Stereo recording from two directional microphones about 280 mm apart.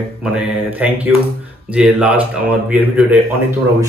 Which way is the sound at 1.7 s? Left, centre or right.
Centre.